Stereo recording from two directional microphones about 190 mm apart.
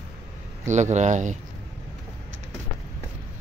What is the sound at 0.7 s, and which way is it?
Speech, 40° right (ahead or behind).